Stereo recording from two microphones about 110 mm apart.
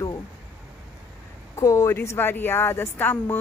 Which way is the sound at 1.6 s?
30° left (ahead or behind).